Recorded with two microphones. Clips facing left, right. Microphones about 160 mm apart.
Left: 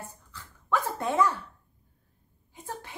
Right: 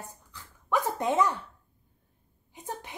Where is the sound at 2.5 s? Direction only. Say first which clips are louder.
Right 1 dB; 20° right (ahead or behind).